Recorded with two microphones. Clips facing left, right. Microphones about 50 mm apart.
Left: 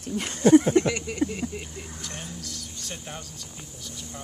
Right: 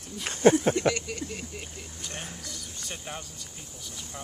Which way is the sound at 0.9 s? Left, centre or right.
Centre.